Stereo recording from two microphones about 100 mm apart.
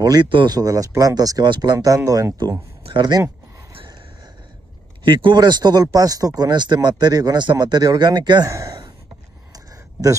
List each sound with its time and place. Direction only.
0.0 s speech: 40° right (ahead or behind)
0.3 s speech: 55° right (ahead or behind)
0.6 s speech: 35° right (ahead or behind)
5.0 s speech: 55° right (ahead or behind)